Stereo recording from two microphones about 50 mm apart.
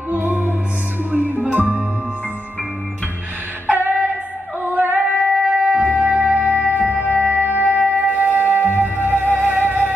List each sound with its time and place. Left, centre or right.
0.1 s music: right
3.6 s female singing: right
4.6 s music: right